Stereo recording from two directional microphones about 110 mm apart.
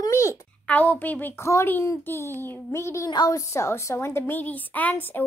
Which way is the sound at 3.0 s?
40° left (ahead or behind).